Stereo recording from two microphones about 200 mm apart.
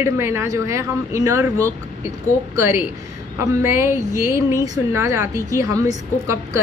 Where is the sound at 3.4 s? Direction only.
15° right (ahead or behind).